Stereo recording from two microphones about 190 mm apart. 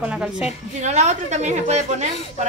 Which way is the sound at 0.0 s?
5° right (ahead or behind).